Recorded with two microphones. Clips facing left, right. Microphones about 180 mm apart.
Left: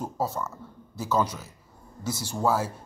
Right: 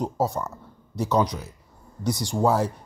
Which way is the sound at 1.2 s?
15° right (ahead or behind).